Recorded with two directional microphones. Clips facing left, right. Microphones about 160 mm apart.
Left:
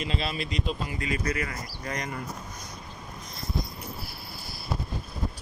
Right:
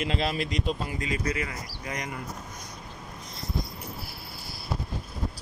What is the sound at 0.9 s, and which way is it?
Speech, 30° right (ahead or behind).